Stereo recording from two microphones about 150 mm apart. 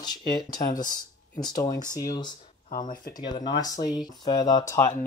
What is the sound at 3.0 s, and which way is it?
Speech, 25° left (ahead or behind).